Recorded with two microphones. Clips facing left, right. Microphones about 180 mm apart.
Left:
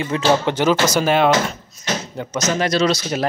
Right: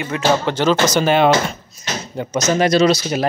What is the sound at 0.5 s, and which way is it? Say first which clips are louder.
Speech: even; 15° left (ahead or behind).